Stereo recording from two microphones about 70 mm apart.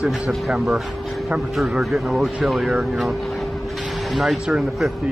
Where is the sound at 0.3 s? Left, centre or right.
Centre.